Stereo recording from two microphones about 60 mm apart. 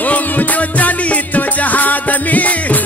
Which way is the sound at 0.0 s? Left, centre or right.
Left.